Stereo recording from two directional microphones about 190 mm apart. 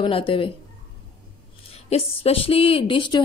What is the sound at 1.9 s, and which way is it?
A woman's voice, 30° left (ahead or behind).